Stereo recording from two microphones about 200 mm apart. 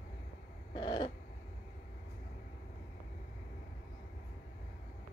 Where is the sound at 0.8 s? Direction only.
25° left (ahead or behind).